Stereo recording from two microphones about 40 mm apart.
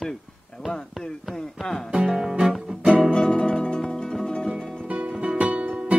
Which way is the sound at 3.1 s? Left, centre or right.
Left.